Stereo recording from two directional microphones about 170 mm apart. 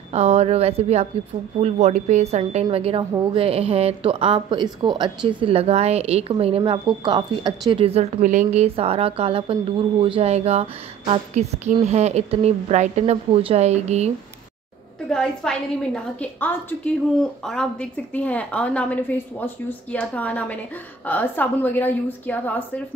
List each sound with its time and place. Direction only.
0.1 s a woman's voice: 40° right (ahead or behind)
8.2 s a woman's voice: 45° right (ahead or behind)
15.0 s a woman's voice: 5° left (ahead or behind)